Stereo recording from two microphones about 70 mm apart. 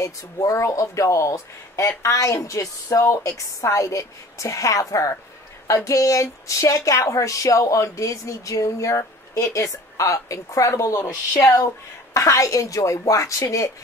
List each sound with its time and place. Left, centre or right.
0.0 s speech: left
12.1 s speech: left